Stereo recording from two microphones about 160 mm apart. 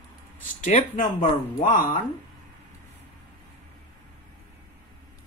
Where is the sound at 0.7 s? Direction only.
50° left (ahead or behind).